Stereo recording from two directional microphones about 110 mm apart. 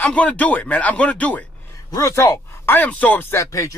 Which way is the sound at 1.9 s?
30° left (ahead or behind).